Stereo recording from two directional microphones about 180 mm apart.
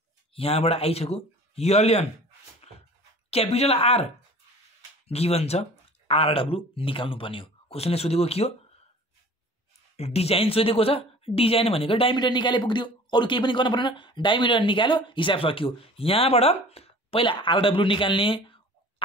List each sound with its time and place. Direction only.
0.3 s speech: 35° left (ahead or behind)
2.6 s a sound: 35° left (ahead or behind)
3.3 s speech: 35° left (ahead or behind)
9.9 s speech: 35° left (ahead or behind)